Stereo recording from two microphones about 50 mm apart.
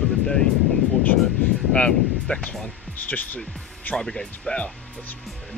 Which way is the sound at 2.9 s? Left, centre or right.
Left.